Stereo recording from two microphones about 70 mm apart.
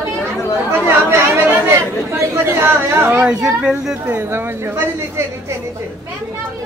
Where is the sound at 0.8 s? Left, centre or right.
Right.